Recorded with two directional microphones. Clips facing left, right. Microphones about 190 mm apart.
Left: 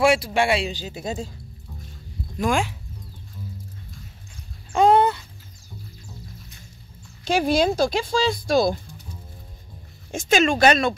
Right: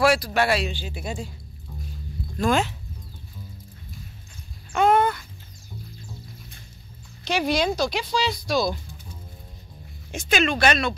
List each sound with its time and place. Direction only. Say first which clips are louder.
0.0 s speech: left 1 dB; 25° left (ahead or behind)
1.2 s music: left 2 dB; 5° right (ahead or behind)
2.3 s speech: right 1 dB; 15° left (ahead or behind)
4.7 s a sound: left 3 dB; 30° left (ahead or behind)
7.2 s speech: left 3 dB; 50° left (ahead or behind)
10.1 s speech: left 4 dB; 45° left (ahead or behind)